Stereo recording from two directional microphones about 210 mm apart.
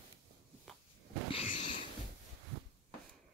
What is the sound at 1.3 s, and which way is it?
Sniff, 25° left (ahead or behind).